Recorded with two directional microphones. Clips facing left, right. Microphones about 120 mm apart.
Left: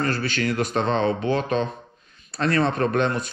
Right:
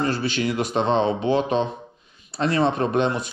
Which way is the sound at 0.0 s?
15° right (ahead or behind).